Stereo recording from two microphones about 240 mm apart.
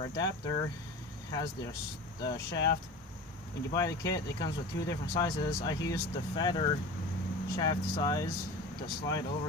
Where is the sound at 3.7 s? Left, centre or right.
Centre.